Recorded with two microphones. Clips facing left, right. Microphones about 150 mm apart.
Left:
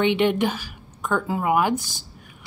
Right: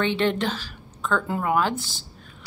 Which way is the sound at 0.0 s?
15° left (ahead or behind).